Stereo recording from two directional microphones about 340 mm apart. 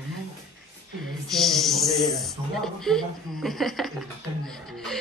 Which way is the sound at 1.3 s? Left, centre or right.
Centre.